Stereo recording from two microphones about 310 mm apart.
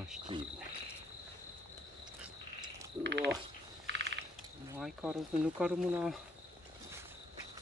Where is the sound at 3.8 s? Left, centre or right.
Right.